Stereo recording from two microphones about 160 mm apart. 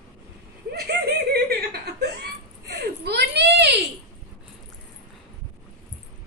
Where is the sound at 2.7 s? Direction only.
90° right.